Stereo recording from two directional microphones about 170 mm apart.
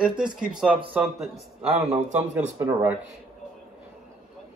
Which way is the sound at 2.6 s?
10° right (ahead or behind).